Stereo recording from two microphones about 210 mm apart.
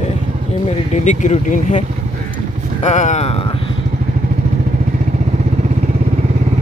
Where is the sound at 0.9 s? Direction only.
35° left (ahead or behind).